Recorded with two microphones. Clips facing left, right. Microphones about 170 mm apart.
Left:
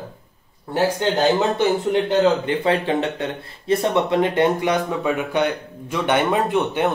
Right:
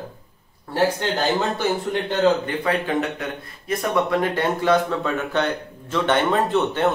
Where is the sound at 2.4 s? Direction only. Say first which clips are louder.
Left 3 dB; 25° left (ahead or behind).